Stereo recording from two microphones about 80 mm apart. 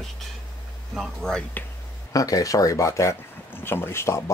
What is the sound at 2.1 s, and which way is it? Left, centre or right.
Speech, left.